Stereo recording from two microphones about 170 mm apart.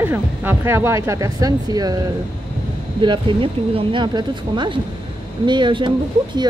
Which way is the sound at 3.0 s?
30° right (ahead or behind).